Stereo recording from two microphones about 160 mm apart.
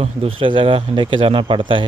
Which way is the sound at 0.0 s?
35° right (ahead or behind).